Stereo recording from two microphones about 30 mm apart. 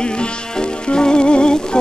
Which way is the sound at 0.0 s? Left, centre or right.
Left.